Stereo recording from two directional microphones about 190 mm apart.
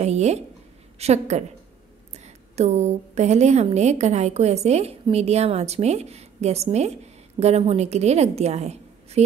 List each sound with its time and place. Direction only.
0.0 s a woman's voice: 35° right (ahead or behind)